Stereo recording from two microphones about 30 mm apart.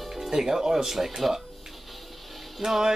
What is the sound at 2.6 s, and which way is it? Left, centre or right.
Speech, centre.